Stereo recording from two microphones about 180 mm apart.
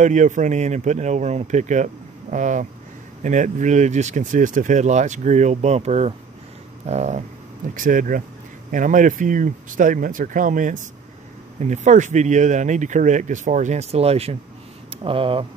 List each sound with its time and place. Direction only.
0.0 s speech: 45° right (ahead or behind)